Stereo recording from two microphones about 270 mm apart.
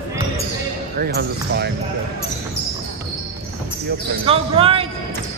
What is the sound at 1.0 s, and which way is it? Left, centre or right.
Speech, right.